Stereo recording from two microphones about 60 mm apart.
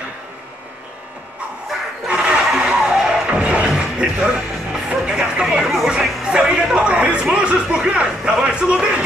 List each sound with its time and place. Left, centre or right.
2.0 s snicker: centre
2.4 s music: centre
6.2 s a sound: centre
7.3 s music: centre